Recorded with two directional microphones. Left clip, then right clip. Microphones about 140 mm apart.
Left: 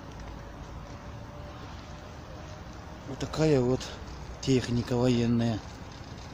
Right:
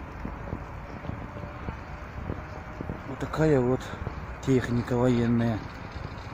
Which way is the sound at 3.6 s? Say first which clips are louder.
Right 2 dB; 10° right (ahead or behind).